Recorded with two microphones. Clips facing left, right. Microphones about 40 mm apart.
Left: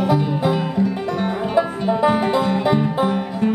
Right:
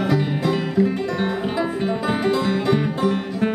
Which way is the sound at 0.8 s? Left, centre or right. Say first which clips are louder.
Even; right.